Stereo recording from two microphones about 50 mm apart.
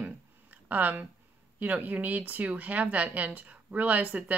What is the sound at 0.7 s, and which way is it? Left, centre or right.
Speech, right.